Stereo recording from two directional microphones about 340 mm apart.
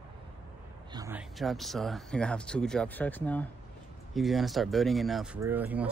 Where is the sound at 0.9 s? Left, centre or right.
Centre.